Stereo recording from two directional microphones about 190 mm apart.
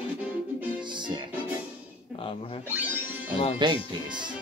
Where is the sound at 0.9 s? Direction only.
25° right (ahead or behind).